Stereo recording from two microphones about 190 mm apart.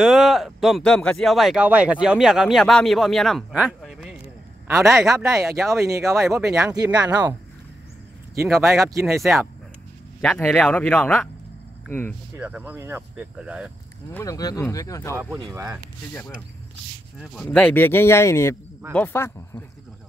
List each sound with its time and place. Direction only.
0.0 s speech: centre (ahead or behind)
4.6 s speech: 15° right (ahead or behind)
8.5 s speech: 15° right (ahead or behind)
9.2 s speech: centre (ahead or behind)
12.4 s speech: 10° right (ahead or behind)
14.1 s speech: 20° left (ahead or behind)
15.3 s speech: 20° right (ahead or behind)
16.1 s speech: 5° left (ahead or behind)